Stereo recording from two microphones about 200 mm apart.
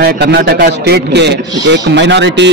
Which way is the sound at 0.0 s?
55° right (ahead or behind).